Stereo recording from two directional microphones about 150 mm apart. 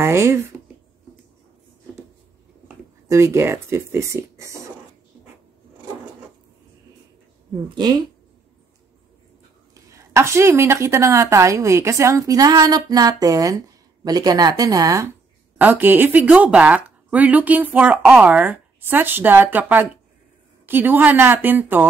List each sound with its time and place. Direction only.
0.0 s speech: 20° right (ahead or behind)
3.1 s a woman's voice: 20° right (ahead or behind)
7.7 s a woman's voice: 30° right (ahead or behind)
9.8 s a woman's voice: 20° right (ahead or behind)
15.5 s speech: 10° right (ahead or behind)